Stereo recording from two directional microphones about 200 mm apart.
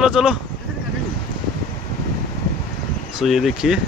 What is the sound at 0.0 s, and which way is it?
Speech, 5° right (ahead or behind).